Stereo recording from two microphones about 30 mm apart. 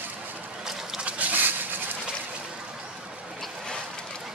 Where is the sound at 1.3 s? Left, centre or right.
Right.